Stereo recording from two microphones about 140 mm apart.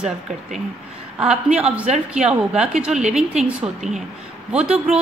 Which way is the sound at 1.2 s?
5° right (ahead or behind).